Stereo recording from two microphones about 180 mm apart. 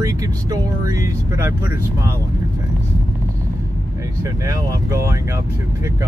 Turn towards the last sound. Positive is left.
turn(degrees=-20)  # may be behind; listen again after turning